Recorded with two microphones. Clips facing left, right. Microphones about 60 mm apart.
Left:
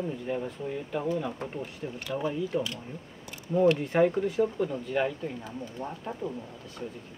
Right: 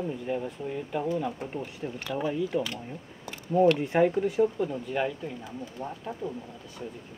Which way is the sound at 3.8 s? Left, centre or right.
Right.